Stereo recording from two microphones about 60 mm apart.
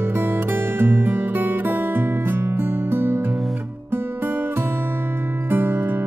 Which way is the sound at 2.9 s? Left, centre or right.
Right.